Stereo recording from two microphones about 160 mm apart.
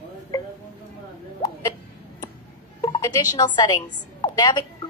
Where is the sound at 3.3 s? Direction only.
25° left (ahead or behind).